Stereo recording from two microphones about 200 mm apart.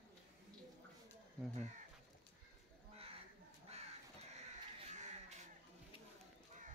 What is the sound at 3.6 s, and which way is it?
Crow, 30° right (ahead or behind).